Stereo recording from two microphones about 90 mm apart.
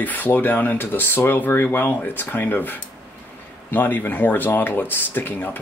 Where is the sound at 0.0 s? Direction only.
20° left (ahead or behind).